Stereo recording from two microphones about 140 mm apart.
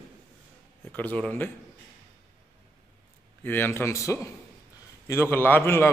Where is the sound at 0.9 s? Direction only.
10° left (ahead or behind).